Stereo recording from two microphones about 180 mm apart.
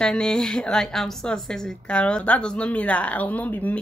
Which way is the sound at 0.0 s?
5° left (ahead or behind).